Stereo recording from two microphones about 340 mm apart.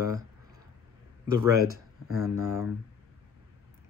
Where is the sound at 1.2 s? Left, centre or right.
Centre.